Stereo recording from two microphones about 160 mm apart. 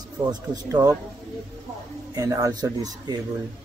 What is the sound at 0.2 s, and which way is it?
Speech, 25° right (ahead or behind).